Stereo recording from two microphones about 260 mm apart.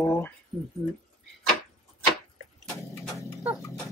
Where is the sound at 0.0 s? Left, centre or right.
Centre.